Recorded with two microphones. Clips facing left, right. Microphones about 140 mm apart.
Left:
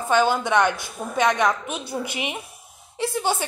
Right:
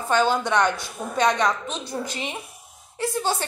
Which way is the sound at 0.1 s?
5° left (ahead or behind).